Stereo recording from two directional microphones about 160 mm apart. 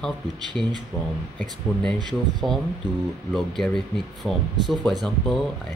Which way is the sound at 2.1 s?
25° right (ahead or behind).